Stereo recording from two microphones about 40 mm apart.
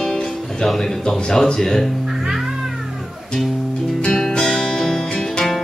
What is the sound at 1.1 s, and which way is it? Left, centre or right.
Speech, left.